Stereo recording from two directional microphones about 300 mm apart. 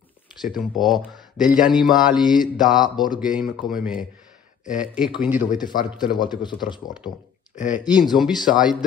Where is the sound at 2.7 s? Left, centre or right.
Centre.